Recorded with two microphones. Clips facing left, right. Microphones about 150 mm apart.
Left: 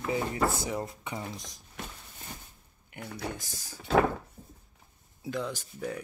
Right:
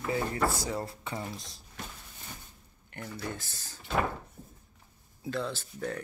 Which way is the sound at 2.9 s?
15° left (ahead or behind).